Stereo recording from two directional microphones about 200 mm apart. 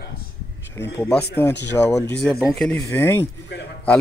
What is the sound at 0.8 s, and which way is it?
Speech, 10° left (ahead or behind).